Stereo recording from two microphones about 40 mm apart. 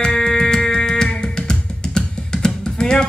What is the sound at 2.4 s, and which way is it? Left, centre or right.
Typing, centre.